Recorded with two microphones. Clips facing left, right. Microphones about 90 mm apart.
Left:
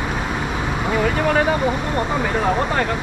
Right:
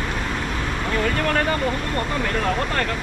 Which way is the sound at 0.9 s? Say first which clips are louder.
Left 4 dB; 10° left (ahead or behind).